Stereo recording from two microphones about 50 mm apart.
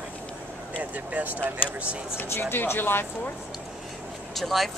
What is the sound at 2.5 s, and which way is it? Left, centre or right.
Speech, left.